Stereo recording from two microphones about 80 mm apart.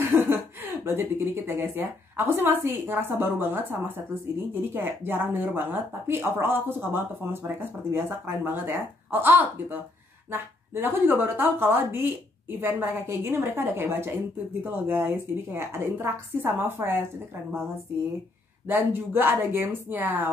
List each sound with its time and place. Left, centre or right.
0.0 s speech: right
18.7 s speech: right